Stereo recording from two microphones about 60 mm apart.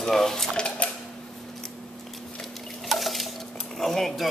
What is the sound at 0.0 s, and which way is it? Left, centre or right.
Dishes, centre.